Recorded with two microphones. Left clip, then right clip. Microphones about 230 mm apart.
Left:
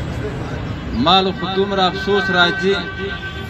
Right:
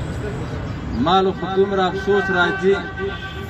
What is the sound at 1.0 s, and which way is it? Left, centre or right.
A man's voice, left.